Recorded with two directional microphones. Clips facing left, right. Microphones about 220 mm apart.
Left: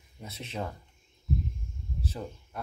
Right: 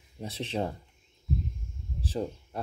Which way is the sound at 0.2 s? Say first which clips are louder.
Right 5 dB; 30° right (ahead or behind).